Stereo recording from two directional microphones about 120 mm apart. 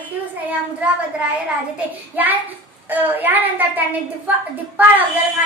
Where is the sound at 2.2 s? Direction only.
15° right (ahead or behind).